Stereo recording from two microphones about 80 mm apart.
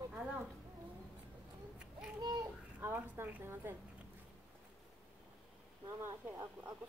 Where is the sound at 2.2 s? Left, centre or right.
Right.